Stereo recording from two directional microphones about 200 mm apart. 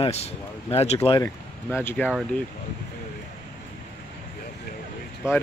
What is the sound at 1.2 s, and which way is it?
Speech, 10° left (ahead or behind).